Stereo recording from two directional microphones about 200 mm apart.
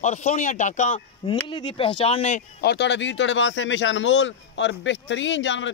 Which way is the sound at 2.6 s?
60° left (ahead or behind).